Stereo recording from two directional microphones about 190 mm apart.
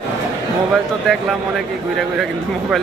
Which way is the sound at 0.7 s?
Centre (ahead or behind).